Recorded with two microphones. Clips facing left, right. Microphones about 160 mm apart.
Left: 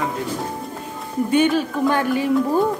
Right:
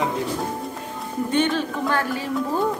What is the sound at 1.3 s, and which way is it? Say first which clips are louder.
Speech: left 4 dB; 10° left (ahead or behind).